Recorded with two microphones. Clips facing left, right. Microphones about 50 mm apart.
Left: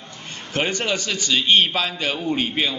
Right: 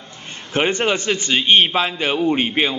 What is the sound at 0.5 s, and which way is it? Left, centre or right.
A man's voice, right.